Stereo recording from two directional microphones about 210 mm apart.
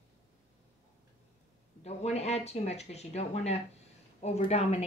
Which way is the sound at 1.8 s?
30° left (ahead or behind).